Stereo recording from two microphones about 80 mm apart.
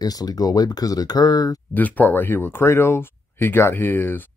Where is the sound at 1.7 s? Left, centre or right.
Left.